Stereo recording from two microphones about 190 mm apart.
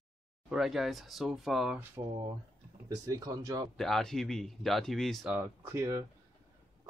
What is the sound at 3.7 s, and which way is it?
Speech, centre (ahead or behind).